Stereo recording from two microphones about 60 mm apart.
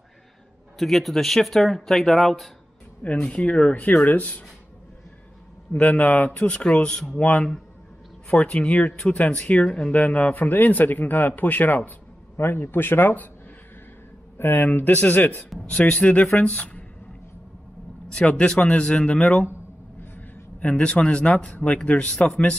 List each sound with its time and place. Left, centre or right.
0.7 s speech: centre
3.2 s speech: centre
5.8 s speech: left
8.3 s speech: left
12.4 s speech: left
14.4 s speech: left
18.0 s speech: centre
20.0 s a sound: left
20.6 s speech: left